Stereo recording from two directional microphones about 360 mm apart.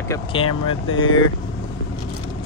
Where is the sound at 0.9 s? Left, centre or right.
Left.